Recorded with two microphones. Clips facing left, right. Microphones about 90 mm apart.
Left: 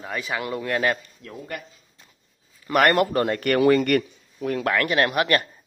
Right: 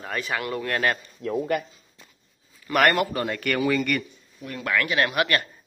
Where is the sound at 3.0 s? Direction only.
40° left (ahead or behind).